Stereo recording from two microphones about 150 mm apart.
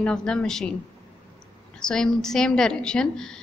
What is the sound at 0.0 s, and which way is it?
Speech, 5° left (ahead or behind).